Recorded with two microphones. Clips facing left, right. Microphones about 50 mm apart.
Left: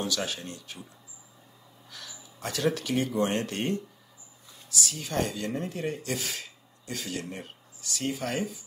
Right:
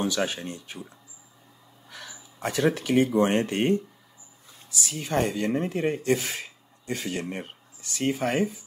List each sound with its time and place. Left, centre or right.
0.0 s speech: right